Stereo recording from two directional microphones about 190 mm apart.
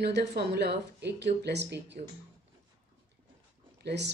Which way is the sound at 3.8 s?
65° right (ahead or behind).